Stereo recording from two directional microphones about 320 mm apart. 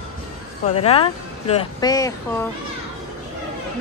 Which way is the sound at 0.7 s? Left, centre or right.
Centre.